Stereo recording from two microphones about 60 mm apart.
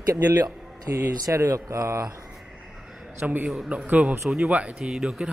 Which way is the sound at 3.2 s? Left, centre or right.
Right.